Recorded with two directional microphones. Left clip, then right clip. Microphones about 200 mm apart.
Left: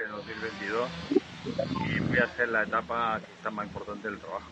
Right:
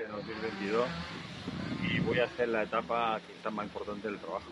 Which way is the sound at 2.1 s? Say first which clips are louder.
Left 5 dB; 15° right (ahead or behind).